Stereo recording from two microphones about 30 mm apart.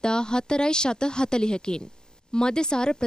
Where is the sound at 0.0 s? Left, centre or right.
Left.